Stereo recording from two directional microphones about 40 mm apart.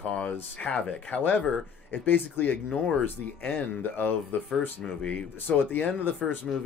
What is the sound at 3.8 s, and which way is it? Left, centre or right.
Speech, left.